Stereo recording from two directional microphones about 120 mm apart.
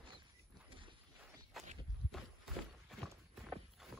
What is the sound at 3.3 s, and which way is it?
Walk, centre (ahead or behind).